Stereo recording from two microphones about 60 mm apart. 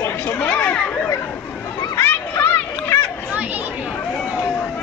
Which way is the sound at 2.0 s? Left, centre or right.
Left.